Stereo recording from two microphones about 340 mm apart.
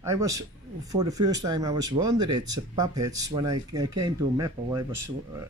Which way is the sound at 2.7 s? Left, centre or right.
Centre.